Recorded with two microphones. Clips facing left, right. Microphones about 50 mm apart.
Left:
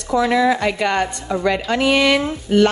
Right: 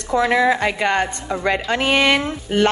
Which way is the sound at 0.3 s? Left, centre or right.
Right.